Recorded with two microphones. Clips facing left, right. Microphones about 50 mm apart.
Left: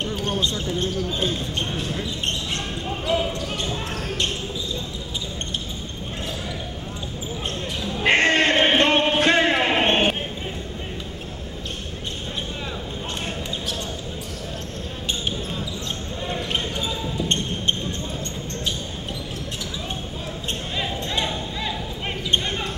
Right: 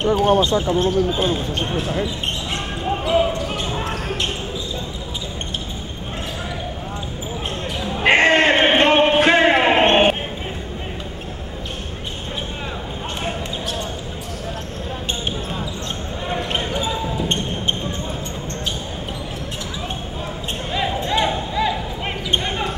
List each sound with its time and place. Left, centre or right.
0.0 s speech: centre
2.9 s basketball bounce: centre
7.8 s basketball bounce: right
8.1 s a sound: centre
13.2 s basketball bounce: centre
16.3 s basketball bounce: centre
20.7 s basketball bounce: centre